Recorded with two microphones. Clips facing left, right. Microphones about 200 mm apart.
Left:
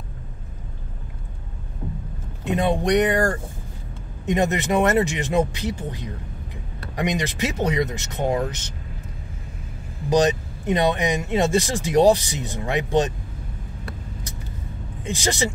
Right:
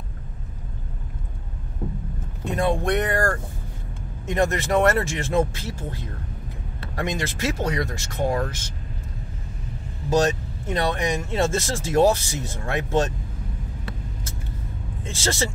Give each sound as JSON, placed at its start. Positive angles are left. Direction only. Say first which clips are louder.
{"t": 2.4, "sound": "speech", "louder": "left 2 dB", "side_deg": 20}
{"t": 10.0, "sound": "speech", "louder": "left 2 dB", "side_deg": 15}
{"t": 15.0, "sound": "speech", "louder": "left 2 dB", "side_deg": 15}